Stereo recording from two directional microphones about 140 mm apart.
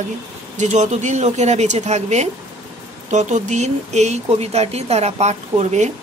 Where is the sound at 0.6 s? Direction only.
55° right (ahead or behind).